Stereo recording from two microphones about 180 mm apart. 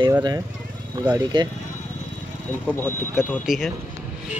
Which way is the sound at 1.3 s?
25° right (ahead or behind).